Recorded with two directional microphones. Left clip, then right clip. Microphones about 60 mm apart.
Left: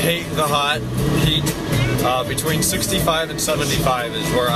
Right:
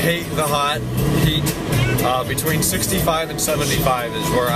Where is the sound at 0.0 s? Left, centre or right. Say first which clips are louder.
Even; centre.